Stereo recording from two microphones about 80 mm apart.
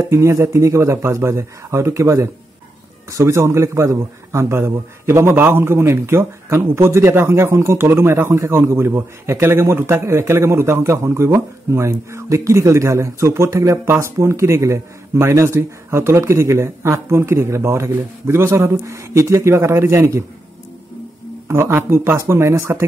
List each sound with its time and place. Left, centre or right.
0.1 s speech: right
21.5 s speech: right